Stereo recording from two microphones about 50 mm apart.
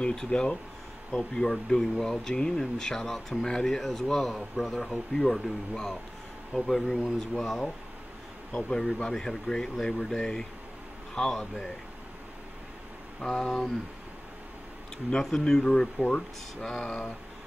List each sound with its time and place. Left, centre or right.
0.0 s speech: centre
6.5 s speech: centre
13.2 s speech: centre
15.0 s speech: centre